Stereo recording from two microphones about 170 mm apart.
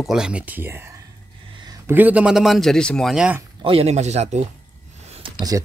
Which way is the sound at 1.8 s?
10° right (ahead or behind).